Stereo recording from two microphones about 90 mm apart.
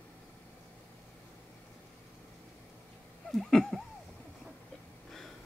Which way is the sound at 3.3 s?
5° left (ahead or behind).